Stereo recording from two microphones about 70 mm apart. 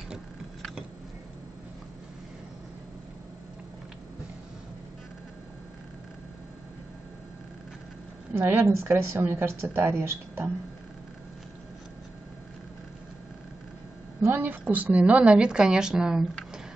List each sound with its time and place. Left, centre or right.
8.3 s a woman's voice: right
14.3 s a woman's voice: right; by 16.3 s centre